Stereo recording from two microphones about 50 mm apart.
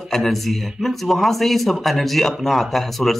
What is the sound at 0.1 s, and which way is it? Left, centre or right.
A man's voice, centre.